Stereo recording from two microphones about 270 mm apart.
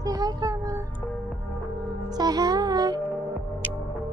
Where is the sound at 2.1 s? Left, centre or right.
Centre.